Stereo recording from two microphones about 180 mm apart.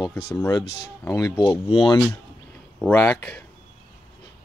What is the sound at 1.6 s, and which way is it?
Speech, 30° left (ahead or behind).